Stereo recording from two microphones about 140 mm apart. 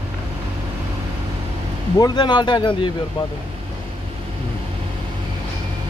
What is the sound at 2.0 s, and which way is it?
Speech, 30° left (ahead or behind).